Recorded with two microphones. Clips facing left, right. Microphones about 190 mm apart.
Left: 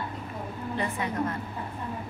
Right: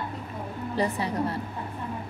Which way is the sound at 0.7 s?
35° right (ahead or behind).